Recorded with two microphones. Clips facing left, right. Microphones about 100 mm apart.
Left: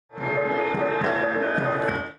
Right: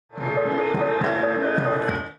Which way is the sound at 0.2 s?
10° right (ahead or behind).